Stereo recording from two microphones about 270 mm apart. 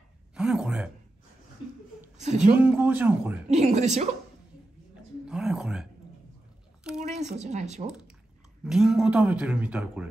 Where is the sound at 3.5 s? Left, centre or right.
Right.